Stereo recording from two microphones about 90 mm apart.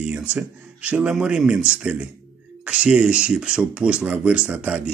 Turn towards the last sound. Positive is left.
turn(degrees=-15)  # may be behind; listen again after turning